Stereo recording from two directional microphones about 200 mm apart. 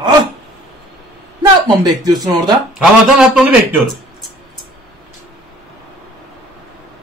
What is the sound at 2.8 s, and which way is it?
A man's voice, 5° right (ahead or behind).